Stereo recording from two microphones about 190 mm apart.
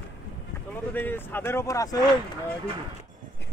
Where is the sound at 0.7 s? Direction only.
10° left (ahead or behind).